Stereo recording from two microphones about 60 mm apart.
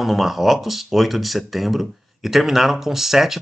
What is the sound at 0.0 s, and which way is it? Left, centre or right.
Speech, centre.